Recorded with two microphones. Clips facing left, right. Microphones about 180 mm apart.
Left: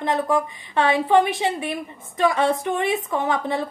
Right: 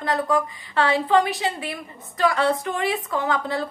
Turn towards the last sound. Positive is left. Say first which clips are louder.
# left 1 dB
turn(degrees=25)  # may be behind; listen again after turning